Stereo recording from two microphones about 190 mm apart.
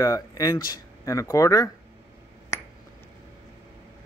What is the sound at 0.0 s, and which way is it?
Speech, 20° left (ahead or behind).